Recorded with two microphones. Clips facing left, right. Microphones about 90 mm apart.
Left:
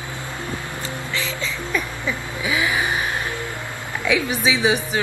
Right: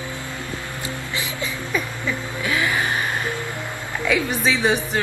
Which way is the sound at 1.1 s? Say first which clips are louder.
Left 2 dB; 15° right (ahead or behind).